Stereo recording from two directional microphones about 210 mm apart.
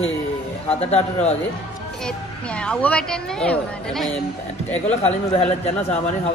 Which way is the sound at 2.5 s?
5° left (ahead or behind).